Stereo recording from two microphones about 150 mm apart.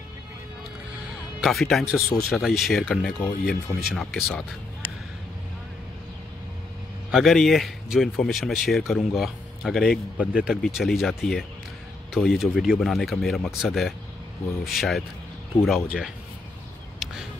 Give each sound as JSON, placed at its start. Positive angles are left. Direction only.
{"t": 1.4, "sound": "speech", "side_deg": 0}
{"t": 2.0, "sound": "speech", "side_deg": 20}
{"t": 2.3, "sound": "speech", "side_deg": 0}
{"t": 7.1, "sound": "speech", "side_deg": 0}